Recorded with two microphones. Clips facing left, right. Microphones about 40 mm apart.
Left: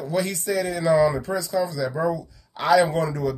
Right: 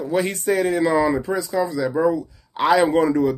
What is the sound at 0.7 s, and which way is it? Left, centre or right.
Speech, right.